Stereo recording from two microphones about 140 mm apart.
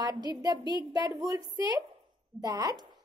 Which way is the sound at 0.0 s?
25° right (ahead or behind).